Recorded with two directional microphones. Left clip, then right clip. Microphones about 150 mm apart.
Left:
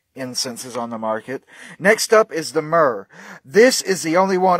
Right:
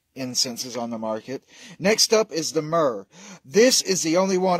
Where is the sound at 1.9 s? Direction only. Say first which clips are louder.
Left 5 dB; centre (ahead or behind).